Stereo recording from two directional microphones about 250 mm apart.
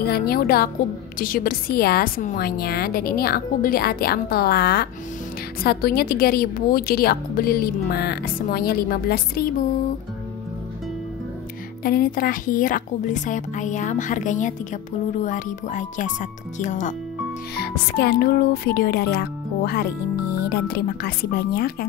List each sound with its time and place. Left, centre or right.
0.0 s a woman's voice: left
11.8 s a woman's voice: left
17.6 s a woman's voice: left